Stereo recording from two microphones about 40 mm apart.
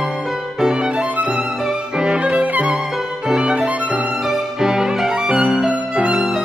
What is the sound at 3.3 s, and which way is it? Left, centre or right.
Violin, centre.